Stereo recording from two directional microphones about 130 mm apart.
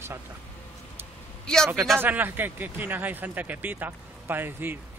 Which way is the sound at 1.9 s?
15° right (ahead or behind).